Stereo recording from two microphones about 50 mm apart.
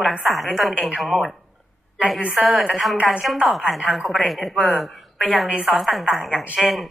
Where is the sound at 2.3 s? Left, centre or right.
Centre.